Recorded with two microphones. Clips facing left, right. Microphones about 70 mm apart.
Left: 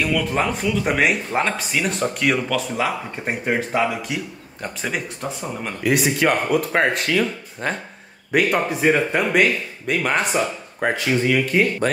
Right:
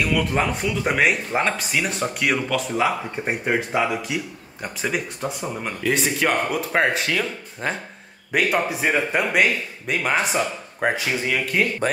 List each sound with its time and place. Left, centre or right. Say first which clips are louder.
0.0 s speech: left 1 dB; centre
11.8 s speech: left 2 dB; centre